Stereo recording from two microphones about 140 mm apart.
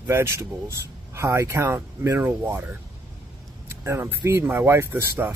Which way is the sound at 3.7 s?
20° right (ahead or behind).